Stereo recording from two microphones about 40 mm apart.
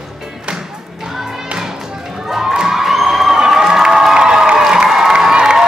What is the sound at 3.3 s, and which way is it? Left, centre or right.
Cheering, centre.